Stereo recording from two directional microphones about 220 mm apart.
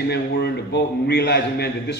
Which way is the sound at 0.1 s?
50° left (ahead or behind).